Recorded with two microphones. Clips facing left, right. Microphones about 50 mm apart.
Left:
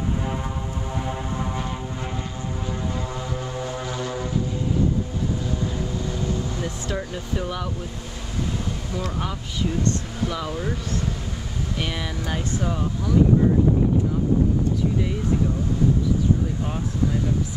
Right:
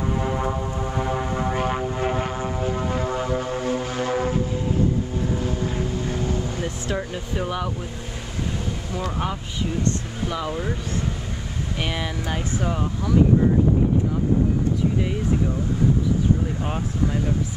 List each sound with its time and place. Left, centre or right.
1.5 s vehicle: right
5.4 s vehicle: right
6.6 s air conditioning: centre
8.9 s speech: centre
11.8 s speech: centre